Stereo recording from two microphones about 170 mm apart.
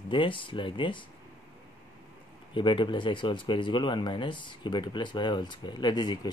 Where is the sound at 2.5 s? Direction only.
30° left (ahead or behind).